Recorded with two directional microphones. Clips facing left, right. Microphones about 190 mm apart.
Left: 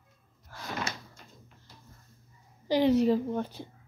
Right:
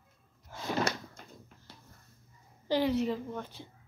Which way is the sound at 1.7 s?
65° right (ahead or behind).